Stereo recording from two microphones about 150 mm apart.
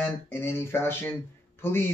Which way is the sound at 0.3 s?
15° left (ahead or behind).